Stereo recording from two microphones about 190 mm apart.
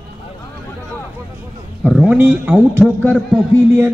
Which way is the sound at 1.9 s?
5° right (ahead or behind).